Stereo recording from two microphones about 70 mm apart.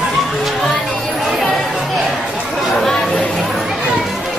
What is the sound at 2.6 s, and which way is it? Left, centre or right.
Children playing, centre.